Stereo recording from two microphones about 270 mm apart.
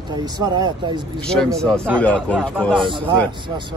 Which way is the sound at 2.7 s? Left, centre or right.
Centre.